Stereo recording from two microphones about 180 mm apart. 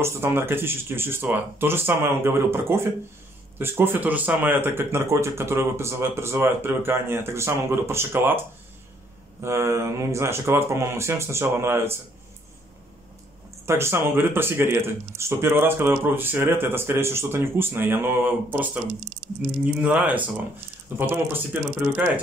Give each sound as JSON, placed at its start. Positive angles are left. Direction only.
{"t": 0.0, "sound": "speech", "side_deg": -15}
{"t": 9.4, "sound": "speech", "side_deg": -15}
{"t": 13.7, "sound": "speech", "side_deg": -15}